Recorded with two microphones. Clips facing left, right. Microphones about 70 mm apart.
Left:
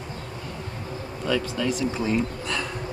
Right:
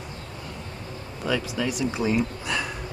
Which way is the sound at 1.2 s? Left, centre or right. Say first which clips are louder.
Left 1 dB; centre.